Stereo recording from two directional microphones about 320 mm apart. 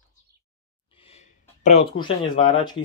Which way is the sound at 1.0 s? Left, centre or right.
Centre.